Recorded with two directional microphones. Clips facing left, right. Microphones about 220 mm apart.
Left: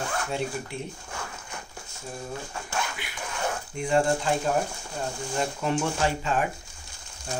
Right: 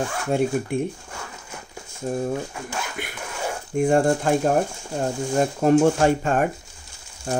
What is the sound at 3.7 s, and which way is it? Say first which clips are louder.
Speech: right 6 dB; 50° right (ahead or behind).